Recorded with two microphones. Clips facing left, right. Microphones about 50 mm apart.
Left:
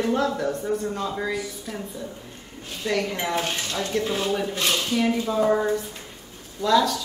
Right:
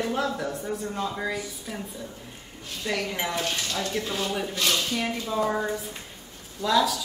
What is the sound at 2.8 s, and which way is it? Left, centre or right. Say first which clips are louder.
Speech: left 3 dB; centre.